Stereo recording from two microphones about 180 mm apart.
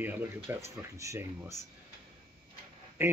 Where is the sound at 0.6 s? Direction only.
15° right (ahead or behind).